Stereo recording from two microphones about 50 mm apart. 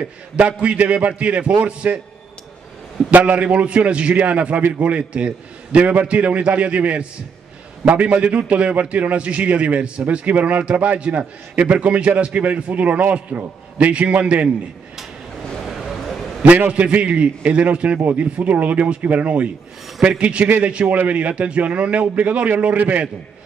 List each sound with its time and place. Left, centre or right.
0.4 s a man's voice: right
3.1 s a man's voice: right
15.6 s a sound: centre
16.4 s a man's voice: right